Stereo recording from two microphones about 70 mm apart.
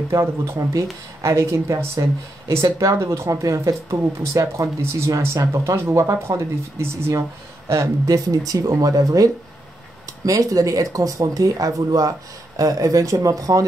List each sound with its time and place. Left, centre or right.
0.1 s speech: right
8.1 s speech: right